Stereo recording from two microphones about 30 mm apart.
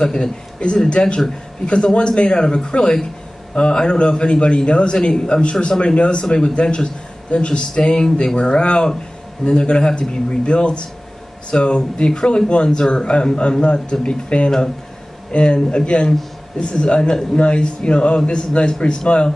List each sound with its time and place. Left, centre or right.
0.0 s a man's voice: left
5.4 s speech: left